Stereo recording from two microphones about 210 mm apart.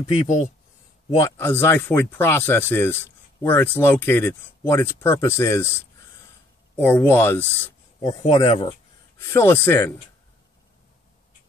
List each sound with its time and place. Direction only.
0.1 s speech: 30° left (ahead or behind)
1.1 s speech: 15° left (ahead or behind)
8.3 s speech: 25° left (ahead or behind)
9.2 s speech: 10° left (ahead or behind)